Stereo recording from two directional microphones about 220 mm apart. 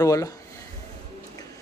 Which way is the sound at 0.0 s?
15° left (ahead or behind).